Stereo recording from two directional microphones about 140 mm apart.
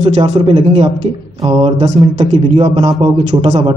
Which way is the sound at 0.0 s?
50° right (ahead or behind).